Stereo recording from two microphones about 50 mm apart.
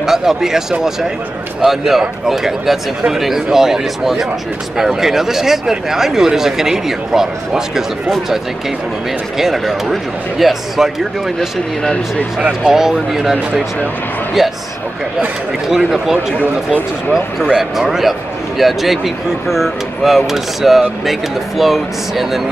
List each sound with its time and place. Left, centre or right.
0.0 s speech: centre
9.4 s speech: centre
11.3 s speech: centre
12.6 s speech: centre
15.7 s speech: centre
17.5 s speech: centre